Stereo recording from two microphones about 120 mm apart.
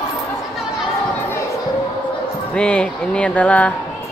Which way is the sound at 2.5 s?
10° left (ahead or behind).